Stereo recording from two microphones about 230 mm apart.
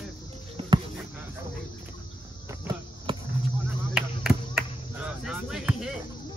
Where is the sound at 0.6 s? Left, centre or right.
Right.